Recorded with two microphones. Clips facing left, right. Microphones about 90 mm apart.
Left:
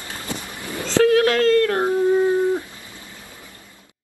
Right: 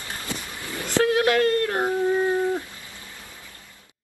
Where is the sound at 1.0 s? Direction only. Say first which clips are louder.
Left 4 dB; 20° right (ahead or behind).